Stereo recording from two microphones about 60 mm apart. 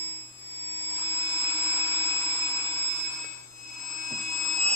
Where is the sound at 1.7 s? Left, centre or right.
Left.